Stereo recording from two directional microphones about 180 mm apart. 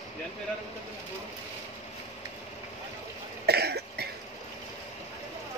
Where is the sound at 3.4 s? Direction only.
65° right (ahead or behind).